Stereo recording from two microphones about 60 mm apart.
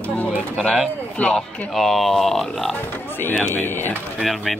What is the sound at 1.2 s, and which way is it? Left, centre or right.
Speech, left.